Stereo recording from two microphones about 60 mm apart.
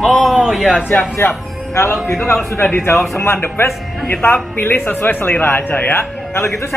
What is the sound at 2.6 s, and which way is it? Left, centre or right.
Speech, left.